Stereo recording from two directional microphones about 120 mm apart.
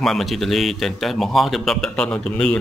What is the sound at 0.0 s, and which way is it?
Speech, centre (ahead or behind).